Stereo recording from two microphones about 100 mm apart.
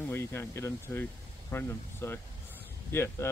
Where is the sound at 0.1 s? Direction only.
25° left (ahead or behind).